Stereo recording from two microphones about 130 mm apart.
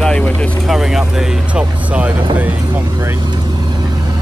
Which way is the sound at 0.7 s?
5° right (ahead or behind).